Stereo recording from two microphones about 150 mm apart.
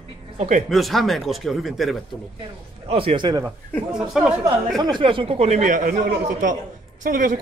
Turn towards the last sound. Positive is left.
turn(degrees=-65)  # may be behind; listen again after turning